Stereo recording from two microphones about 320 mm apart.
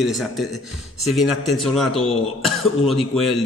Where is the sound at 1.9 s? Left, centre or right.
Centre.